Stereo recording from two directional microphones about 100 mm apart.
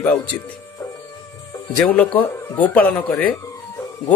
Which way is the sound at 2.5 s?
15° left (ahead or behind).